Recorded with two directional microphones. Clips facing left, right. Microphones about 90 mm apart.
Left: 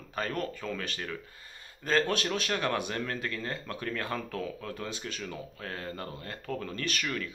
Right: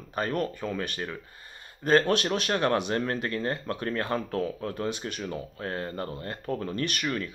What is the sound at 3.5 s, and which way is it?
Speech, 25° right (ahead or behind).